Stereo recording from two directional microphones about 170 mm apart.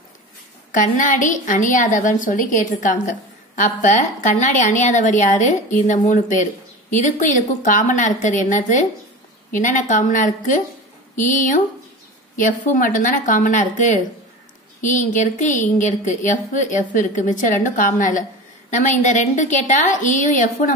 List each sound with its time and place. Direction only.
0.7 s a woman's voice: 50° left (ahead or behind)